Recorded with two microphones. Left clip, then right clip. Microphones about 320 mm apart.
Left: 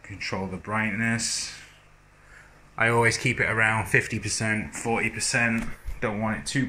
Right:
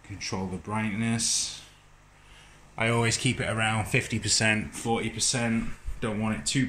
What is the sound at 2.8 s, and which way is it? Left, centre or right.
Speech, centre.